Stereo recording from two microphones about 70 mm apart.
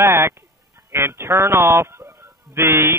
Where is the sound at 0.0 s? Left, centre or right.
Right.